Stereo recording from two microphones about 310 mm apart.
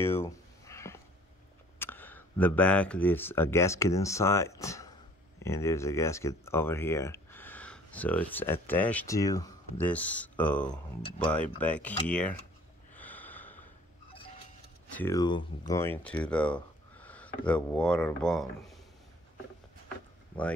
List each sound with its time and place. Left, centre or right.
0.0 s a sound: centre
1.8 s speech: centre
12.9 s snort: centre
15.0 s speech: centre